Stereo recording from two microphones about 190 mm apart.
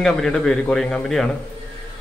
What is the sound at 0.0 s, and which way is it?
Speech, centre (ahead or behind).